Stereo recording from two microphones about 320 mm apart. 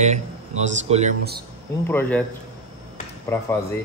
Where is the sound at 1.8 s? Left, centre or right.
Centre.